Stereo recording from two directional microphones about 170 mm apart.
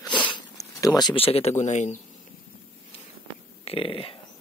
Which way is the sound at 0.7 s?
20° left (ahead or behind).